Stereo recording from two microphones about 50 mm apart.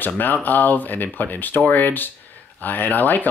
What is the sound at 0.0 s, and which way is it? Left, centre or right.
Speech, left.